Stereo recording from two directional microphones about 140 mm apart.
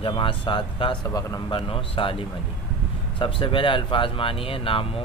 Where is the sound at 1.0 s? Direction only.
25° left (ahead or behind).